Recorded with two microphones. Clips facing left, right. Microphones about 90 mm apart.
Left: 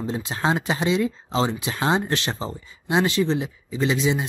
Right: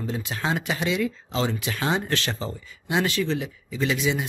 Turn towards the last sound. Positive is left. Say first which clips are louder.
# left 3 dB
turn(degrees=25)  # may be behind; listen again after turning